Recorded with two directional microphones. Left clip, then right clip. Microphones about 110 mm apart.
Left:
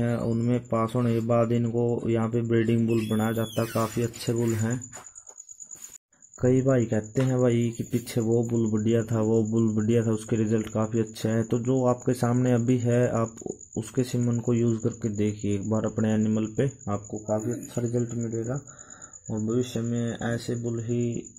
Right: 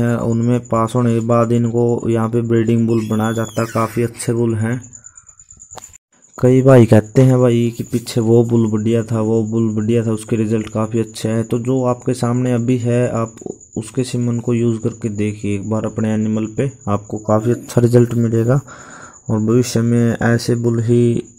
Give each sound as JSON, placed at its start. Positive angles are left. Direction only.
{"t": 0.0, "sound": "speech", "side_deg": -25}
{"t": 3.6, "sound": "speech", "side_deg": -25}
{"t": 4.0, "sound": "speech", "side_deg": -15}
{"t": 6.4, "sound": "speech", "side_deg": -35}
{"t": 6.7, "sound": "speech", "side_deg": -70}
{"t": 7.4, "sound": "speech", "side_deg": -20}
{"t": 8.5, "sound": "speech", "side_deg": -35}
{"t": 8.7, "sound": "speech", "side_deg": -20}
{"t": 17.1, "sound": "speech", "side_deg": -85}
{"t": 19.2, "sound": "speech", "side_deg": -70}